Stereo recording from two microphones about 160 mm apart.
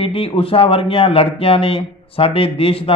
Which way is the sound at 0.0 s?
35° left (ahead or behind).